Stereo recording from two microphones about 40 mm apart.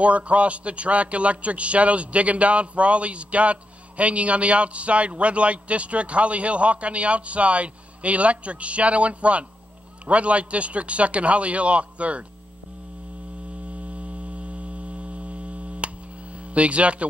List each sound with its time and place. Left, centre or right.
0.0 s a man's voice: right
13.7 s hum: right
16.4 s speech: right